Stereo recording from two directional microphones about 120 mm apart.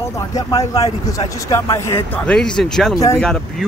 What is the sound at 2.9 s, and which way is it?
Speech, 25° left (ahead or behind).